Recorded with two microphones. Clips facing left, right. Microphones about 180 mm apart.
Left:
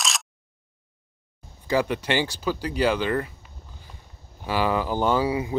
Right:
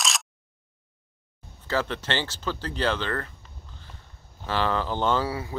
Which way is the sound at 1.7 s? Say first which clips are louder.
Left 4 dB; 15° left (ahead or behind).